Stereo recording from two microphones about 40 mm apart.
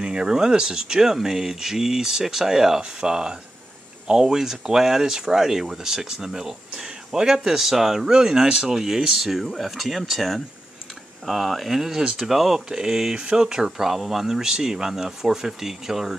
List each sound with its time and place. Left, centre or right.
0.0 s speech: right